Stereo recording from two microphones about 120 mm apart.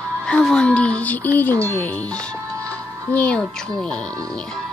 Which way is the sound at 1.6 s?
10° left (ahead or behind).